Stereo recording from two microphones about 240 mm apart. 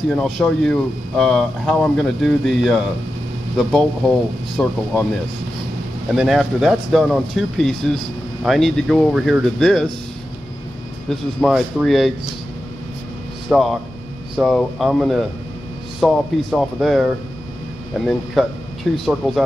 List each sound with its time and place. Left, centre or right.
0.1 s speech: centre
6.1 s speech: centre
11.1 s speech: centre
13.5 s speech: centre